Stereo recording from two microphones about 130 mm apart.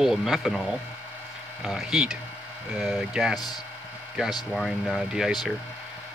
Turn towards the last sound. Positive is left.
turn(degrees=0)  # may be behind; listen again after turning